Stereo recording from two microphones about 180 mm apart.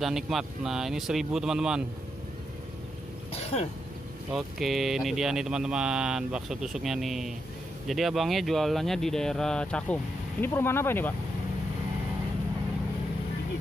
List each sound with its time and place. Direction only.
0.0 s speech: centre (ahead or behind)
3.3 s a sound: 35° left (ahead or behind)
4.3 s speech: centre (ahead or behind)